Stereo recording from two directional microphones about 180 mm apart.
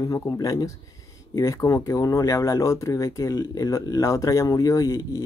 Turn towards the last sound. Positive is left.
turn(degrees=20)  # may be behind; listen again after turning